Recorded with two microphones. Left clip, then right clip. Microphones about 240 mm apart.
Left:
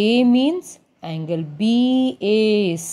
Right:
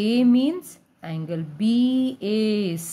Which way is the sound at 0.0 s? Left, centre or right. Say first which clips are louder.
Left 4 dB; centre.